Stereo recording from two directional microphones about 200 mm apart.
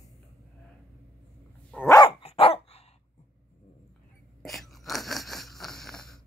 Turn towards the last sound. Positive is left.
turn(degrees=0)  # may be behind; listen again after turning